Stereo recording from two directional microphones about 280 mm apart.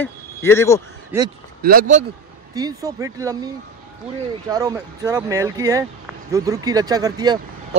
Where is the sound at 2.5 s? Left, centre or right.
Centre.